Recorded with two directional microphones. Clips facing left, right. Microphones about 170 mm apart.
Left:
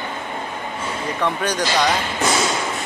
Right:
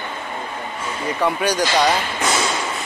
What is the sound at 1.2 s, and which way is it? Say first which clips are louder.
Speech: right 3 dB; 10° right (ahead or behind).